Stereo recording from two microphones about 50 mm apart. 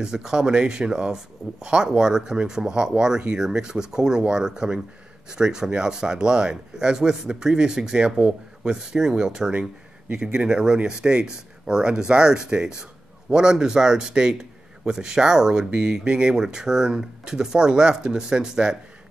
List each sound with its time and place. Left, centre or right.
0.0 s speech: centre